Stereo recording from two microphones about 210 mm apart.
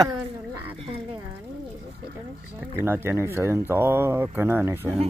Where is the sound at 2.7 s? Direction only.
10° right (ahead or behind).